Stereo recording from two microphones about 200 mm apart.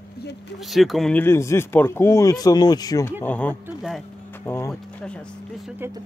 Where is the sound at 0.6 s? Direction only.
Centre (ahead or behind).